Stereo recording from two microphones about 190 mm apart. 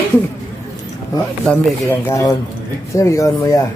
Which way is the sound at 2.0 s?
15° left (ahead or behind).